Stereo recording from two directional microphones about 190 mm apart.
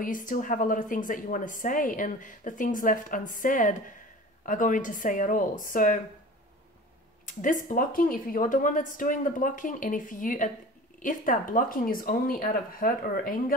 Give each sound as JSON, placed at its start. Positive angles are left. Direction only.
{"t": 0.0, "sound": "a woman's voice", "side_deg": 45}
{"t": 7.2, "sound": "a woman's voice", "side_deg": 45}